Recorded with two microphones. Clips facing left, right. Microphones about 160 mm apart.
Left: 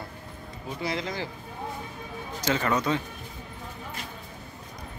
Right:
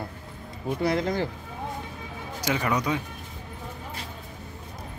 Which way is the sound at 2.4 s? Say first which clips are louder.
Even; 10° right (ahead or behind).